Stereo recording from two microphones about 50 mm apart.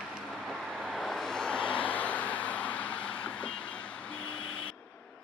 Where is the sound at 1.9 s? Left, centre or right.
Left.